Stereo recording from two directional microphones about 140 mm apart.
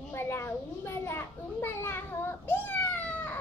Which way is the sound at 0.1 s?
15° left (ahead or behind).